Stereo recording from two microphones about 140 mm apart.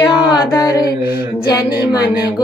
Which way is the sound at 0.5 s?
25° left (ahead or behind).